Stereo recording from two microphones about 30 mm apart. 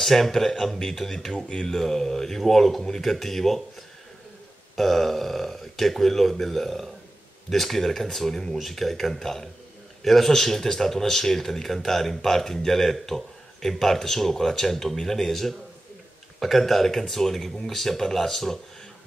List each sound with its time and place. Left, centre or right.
0.0 s speech: centre
1.3 s speech: left
1.7 s speech: centre
4.7 s speech: centre